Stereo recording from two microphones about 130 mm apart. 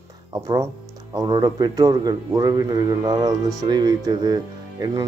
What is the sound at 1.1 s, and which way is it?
Speech, 30° right (ahead or behind).